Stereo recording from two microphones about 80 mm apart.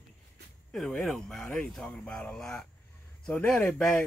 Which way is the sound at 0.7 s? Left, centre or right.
Centre.